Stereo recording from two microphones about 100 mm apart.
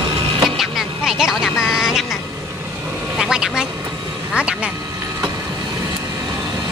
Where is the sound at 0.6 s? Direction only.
5° right (ahead or behind).